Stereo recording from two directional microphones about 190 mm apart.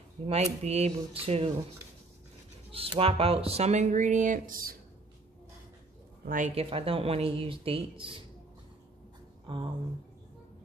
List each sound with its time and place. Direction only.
0.3 s speech: 35° right (ahead or behind)
2.7 s speech: 30° right (ahead or behind); by 4.7 s 45° right (ahead or behind)
6.2 s speech: 40° right (ahead or behind)
9.5 s speech: 25° right (ahead or behind)